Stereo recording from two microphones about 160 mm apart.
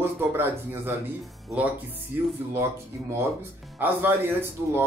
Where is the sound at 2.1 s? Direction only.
15° right (ahead or behind).